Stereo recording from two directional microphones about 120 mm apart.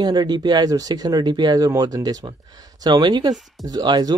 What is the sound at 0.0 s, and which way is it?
Speech, 35° right (ahead or behind).